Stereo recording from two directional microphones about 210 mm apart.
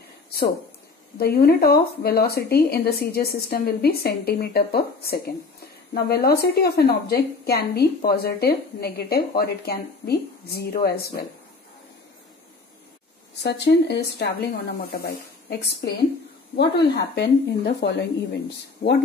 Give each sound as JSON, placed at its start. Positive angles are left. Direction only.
{"t": 1.2, "sound": "a woman's voice", "side_deg": 45}
{"t": 13.4, "sound": "a woman's voice", "side_deg": 50}